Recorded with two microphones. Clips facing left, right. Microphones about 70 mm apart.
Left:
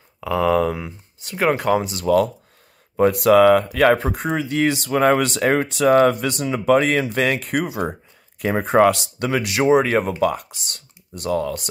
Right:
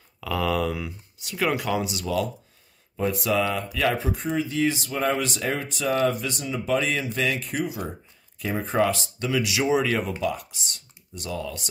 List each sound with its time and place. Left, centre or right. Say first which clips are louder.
0.2 s speech: left 7 dB; left
3.0 s speech: left 11 dB; left
4.4 s speech: left 4 dB; left
9.3 s speech: left 6 dB; left